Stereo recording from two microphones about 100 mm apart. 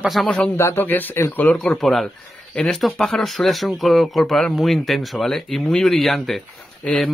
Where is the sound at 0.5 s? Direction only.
25° left (ahead or behind).